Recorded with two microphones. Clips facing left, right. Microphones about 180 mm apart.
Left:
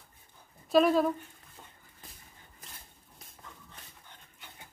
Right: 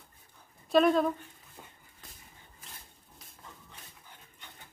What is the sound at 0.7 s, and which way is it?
Speech, centre (ahead or behind).